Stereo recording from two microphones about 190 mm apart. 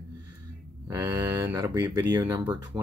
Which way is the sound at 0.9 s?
15° right (ahead or behind).